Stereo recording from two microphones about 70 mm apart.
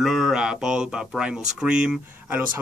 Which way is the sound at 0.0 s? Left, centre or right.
Centre.